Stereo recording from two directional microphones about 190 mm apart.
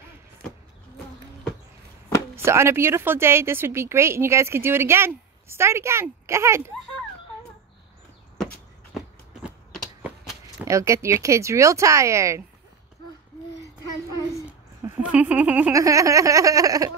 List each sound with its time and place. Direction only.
2.3 s speech: 15° right (ahead or behind)
8.9 s a sound: 5° right (ahead or behind)
10.6 s speech: 15° right (ahead or behind)
15.0 s speech: 5° right (ahead or behind)